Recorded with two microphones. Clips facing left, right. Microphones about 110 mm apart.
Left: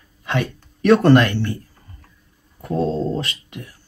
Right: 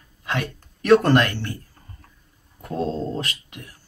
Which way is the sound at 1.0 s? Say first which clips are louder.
Left 5 dB; 20° left (ahead or behind).